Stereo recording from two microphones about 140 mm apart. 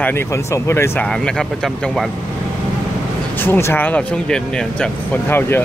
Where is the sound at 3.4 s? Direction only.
15° left (ahead or behind).